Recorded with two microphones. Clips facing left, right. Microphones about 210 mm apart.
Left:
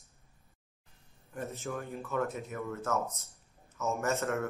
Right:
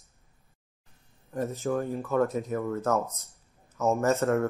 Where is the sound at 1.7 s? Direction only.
35° right (ahead or behind).